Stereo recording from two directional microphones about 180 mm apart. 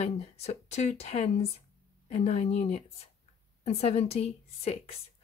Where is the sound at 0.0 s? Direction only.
35° left (ahead or behind).